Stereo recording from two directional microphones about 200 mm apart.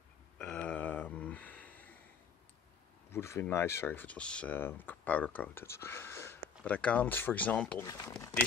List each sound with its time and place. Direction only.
0.4 s a sound: 5° left (ahead or behind)
3.1 s speech: 15° left (ahead or behind)
7.8 s speech: 20° left (ahead or behind)